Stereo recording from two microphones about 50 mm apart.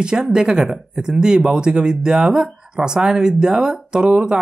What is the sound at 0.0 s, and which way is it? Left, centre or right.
Speech, centre.